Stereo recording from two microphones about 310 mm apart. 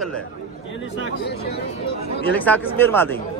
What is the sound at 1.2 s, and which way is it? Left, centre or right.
Speech, left.